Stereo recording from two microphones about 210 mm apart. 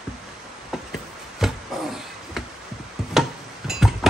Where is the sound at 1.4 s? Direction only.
Centre (ahead or behind).